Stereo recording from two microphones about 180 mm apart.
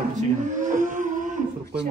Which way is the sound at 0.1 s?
45° right (ahead or behind).